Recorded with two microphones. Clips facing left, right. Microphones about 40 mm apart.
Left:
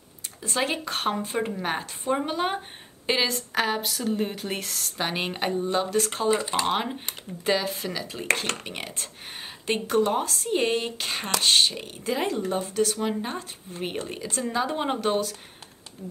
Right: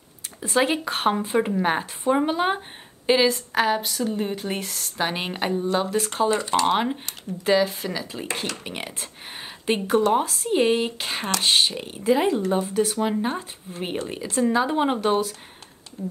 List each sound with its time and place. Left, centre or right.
0.4 s speech: centre